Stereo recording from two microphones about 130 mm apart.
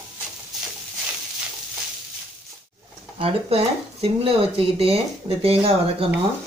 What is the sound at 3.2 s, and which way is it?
Speech, 50° right (ahead or behind).